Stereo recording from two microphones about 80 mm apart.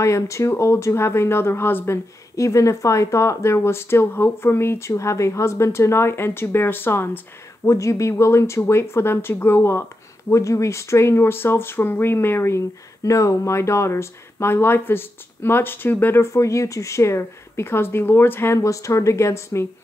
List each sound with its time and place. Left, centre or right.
0.0 s speech: left
2.3 s speech: left
7.6 s speech: left
16.3 s speech: left